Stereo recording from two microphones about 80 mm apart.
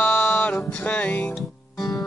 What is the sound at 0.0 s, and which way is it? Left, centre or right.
Music, centre.